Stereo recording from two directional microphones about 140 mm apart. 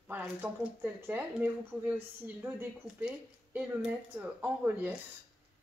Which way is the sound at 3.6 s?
10° right (ahead or behind).